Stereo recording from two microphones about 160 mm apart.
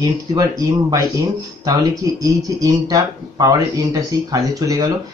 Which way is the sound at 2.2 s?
20° right (ahead or behind).